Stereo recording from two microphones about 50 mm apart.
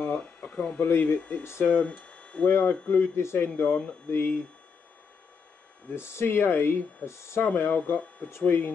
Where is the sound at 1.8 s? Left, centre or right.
Left.